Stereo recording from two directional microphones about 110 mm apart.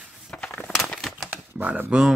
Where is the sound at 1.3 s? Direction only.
15° right (ahead or behind).